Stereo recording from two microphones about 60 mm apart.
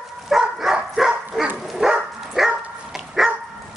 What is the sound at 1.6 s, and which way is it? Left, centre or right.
Dog, centre.